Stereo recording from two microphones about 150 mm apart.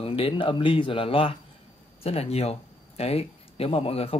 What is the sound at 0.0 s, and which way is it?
Speech, 40° left (ahead or behind).